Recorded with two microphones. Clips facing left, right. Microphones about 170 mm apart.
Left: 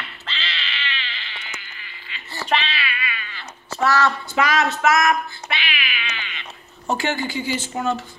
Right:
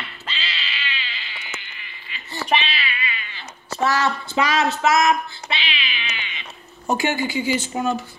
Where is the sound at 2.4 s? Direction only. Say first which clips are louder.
Right 1 dB; 15° right (ahead or behind).